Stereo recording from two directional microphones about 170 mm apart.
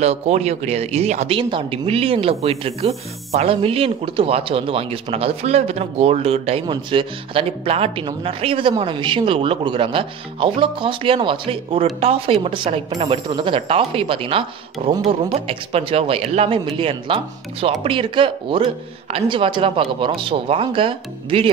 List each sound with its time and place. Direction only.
0.0 s speech: 40° right (ahead or behind)